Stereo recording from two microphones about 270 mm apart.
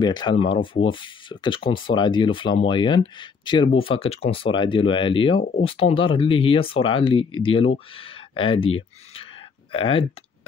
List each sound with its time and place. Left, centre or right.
0.0 s speech: centre